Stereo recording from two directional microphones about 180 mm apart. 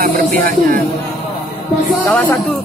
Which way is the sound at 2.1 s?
10° left (ahead or behind).